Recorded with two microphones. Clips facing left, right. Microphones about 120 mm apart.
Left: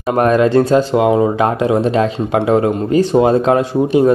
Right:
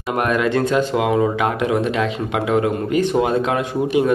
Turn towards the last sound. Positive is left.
turn(degrees=35)  # may be behind; listen again after turning